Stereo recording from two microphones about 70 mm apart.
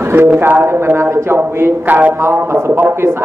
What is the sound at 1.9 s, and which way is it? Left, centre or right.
Speech, right.